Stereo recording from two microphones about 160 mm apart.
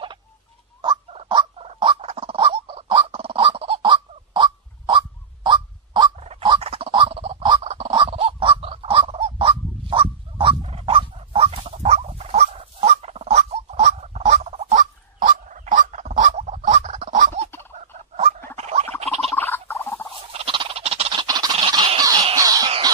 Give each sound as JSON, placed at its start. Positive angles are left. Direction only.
{"t": 1.3, "sound": "a sound", "side_deg": -35}
{"t": 7.6, "sound": "fowl", "side_deg": -40}
{"t": 18.6, "sound": "gargling", "side_deg": -45}
{"t": 19.3, "sound": "cat", "side_deg": 15}
{"t": 20.3, "sound": "a sound", "side_deg": -35}
{"t": 22.3, "sound": "cough", "side_deg": -25}